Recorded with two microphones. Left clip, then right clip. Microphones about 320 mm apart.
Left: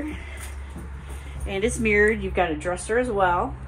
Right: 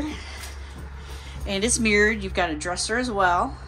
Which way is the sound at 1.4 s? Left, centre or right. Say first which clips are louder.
Even; centre.